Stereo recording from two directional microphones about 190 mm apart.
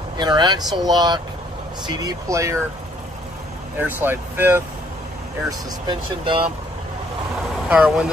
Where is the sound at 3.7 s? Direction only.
10° right (ahead or behind).